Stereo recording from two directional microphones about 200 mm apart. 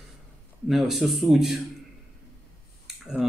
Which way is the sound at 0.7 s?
Centre (ahead or behind).